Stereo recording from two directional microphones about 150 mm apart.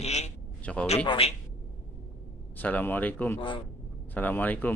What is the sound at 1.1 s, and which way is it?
Speech, 40° left (ahead or behind).